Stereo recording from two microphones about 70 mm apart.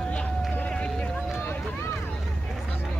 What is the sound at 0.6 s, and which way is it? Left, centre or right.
Run, centre.